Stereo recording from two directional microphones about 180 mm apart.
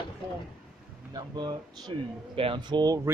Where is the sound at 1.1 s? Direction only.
20° right (ahead or behind).